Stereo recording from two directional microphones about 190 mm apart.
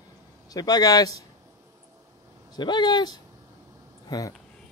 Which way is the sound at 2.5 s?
25° left (ahead or behind).